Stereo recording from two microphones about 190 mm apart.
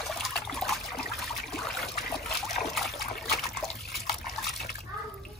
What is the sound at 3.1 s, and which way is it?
Water, centre (ahead or behind).